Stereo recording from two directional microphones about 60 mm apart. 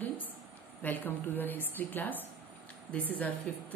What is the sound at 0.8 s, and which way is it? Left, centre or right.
A woman's voice, left.